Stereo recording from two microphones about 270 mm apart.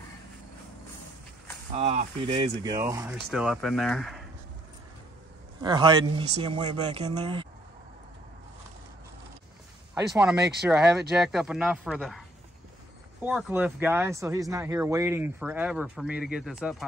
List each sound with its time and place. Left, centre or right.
1.8 s speech: right; by 4.2 s centre
5.6 s speech: centre
9.9 s speech: centre